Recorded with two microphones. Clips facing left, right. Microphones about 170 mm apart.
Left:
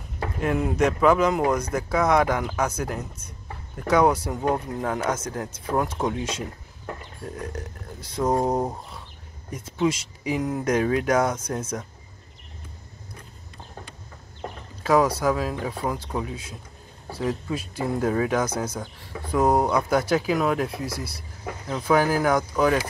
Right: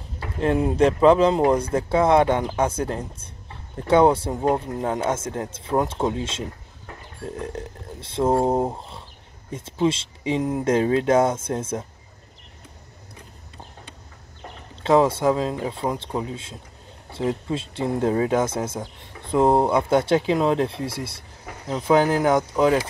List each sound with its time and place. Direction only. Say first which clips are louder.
0.4 s speech: right 4 dB; 30° right (ahead or behind)
14.8 s speech: right 2 dB; 25° right (ahead or behind)